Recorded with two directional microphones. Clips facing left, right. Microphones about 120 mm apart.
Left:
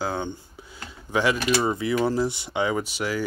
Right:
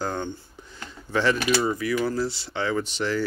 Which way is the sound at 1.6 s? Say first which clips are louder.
Left 2 dB; 25° left (ahead or behind).